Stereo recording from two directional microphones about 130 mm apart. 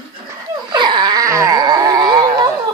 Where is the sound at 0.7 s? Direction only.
35° right (ahead or behind).